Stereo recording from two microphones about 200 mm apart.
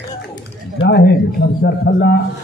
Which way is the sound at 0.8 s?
55° left (ahead or behind).